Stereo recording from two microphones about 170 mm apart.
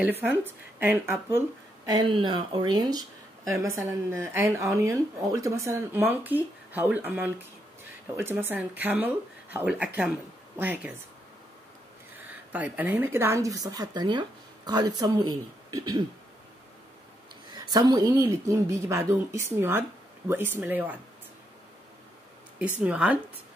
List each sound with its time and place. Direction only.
0.0 s speech: 10° right (ahead or behind)
1.9 s speech: 25° right (ahead or behind); by 10.9 s 10° right (ahead or behind)
12.5 s speech: 10° right (ahead or behind)
17.6 s speech: 25° right (ahead or behind)
22.8 s speech: 10° right (ahead or behind)